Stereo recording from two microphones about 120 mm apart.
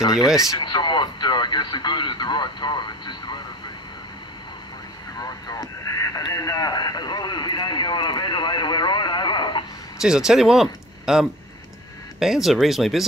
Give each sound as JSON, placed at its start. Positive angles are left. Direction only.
{"t": 0.0, "sound": "speech", "side_deg": 30}
{"t": 5.2, "sound": "radio", "side_deg": 30}
{"t": 9.9, "sound": "speech", "side_deg": -5}